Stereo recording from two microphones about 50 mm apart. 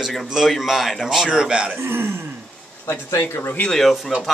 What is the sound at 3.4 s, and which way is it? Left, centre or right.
Speech, left.